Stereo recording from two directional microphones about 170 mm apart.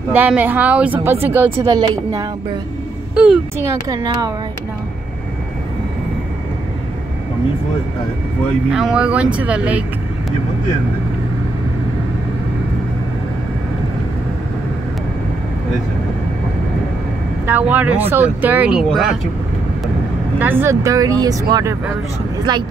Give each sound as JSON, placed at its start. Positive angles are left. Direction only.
{"t": 0.1, "sound": "a woman's voice", "side_deg": -10}
{"t": 1.7, "sound": "speech", "side_deg": -25}
{"t": 3.2, "sound": "speech", "side_deg": -5}
{"t": 3.9, "sound": "speech", "side_deg": -20}
{"t": 8.6, "sound": "a woman's voice", "side_deg": -5}
{"t": 17.5, "sound": "a woman's voice", "side_deg": -10}
{"t": 20.3, "sound": "speech", "side_deg": -10}